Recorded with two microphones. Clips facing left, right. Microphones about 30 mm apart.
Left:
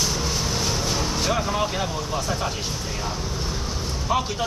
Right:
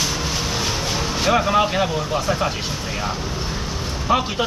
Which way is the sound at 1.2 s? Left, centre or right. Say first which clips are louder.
Right 9 dB; right.